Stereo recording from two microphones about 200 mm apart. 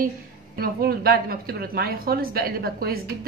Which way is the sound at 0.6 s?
50° right (ahead or behind).